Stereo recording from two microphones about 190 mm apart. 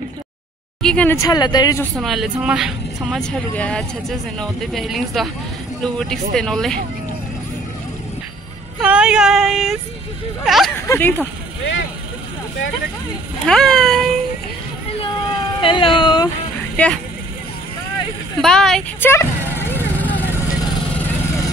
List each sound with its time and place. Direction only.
0.8 s speech: 10° left (ahead or behind)
2.0 s speech: centre (ahead or behind)
8.8 s speech: 5° right (ahead or behind)
10.9 s speech: 10° left (ahead or behind)
13.5 s speech: 5° left (ahead or behind)
15.6 s speech: 25° left (ahead or behind)
16.7 s speech: 5° left (ahead or behind)
18.4 s speech: centre (ahead or behind)
19.7 s vehicle: 10° left (ahead or behind)